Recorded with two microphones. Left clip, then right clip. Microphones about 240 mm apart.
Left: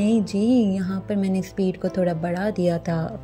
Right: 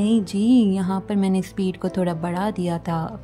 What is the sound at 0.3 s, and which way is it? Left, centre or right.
A woman's voice, centre.